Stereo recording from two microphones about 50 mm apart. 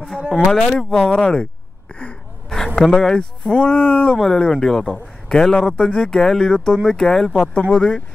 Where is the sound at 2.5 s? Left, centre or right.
Centre.